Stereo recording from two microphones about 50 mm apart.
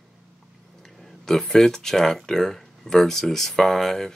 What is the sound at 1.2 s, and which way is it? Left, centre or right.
Speech, centre.